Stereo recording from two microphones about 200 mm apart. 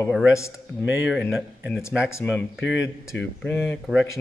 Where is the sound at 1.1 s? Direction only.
Centre (ahead or behind).